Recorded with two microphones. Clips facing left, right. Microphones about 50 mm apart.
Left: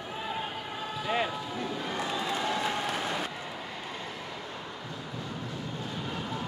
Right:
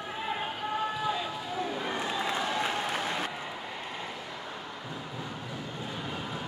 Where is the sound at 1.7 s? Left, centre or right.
Centre.